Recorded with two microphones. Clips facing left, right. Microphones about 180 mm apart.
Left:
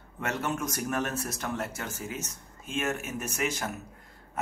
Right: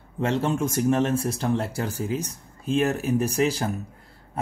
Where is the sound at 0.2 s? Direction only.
30° right (ahead or behind).